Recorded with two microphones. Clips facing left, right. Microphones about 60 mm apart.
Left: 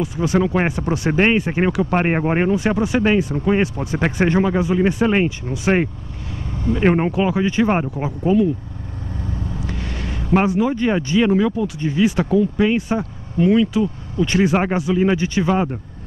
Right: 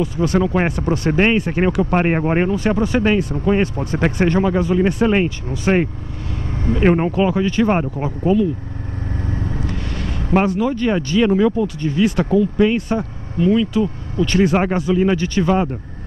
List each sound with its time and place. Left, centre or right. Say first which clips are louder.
0.0 s speech: right 1 dB; centre
10.3 s speech: even; centre
11.2 s speech: right 2 dB; centre
11.6 s speech: right 1 dB; centre